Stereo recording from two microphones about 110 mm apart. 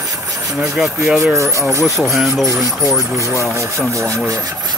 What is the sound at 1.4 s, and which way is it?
Speech, 30° right (ahead or behind).